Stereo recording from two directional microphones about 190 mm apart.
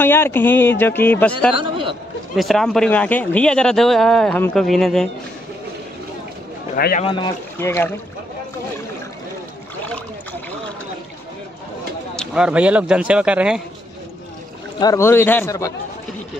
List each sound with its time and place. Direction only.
0.0 s a man's voice: 10° left (ahead or behind)
1.5 s a man's voice: 25° right (ahead or behind)
2.3 s speech: centre (ahead or behind)
6.7 s speech: 50° left (ahead or behind)
7.0 s speech: 25° left (ahead or behind)
7.5 s a man's voice: 10° left (ahead or behind)
12.2 s speech: 5° right (ahead or behind)
14.8 s a man's voice: 15° left (ahead or behind)